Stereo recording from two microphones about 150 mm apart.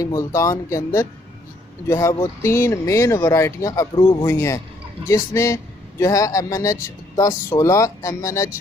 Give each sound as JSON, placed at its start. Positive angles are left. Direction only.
{"t": 0.0, "sound": "a man's voice", "side_deg": 25}
{"t": 4.3, "sound": "a man's voice", "side_deg": 20}